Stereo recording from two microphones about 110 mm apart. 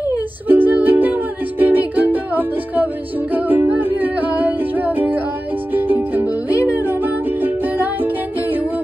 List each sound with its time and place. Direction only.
0.5 s music: 15° right (ahead or behind)